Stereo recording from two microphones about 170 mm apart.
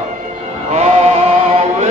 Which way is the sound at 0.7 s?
40° right (ahead or behind).